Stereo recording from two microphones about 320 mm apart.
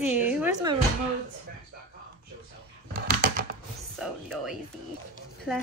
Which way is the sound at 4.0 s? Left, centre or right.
Centre.